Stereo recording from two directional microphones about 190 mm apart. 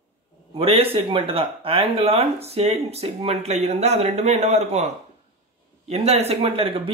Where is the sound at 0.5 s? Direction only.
30° right (ahead or behind).